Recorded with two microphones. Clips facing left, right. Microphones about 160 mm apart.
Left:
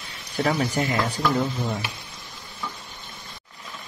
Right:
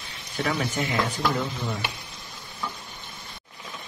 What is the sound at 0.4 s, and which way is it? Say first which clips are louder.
Speech: left 4 dB; 30° left (ahead or behind).